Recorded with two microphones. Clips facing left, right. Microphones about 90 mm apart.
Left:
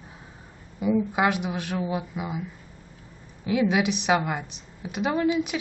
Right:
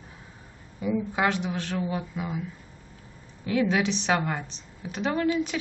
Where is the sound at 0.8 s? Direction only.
15° left (ahead or behind).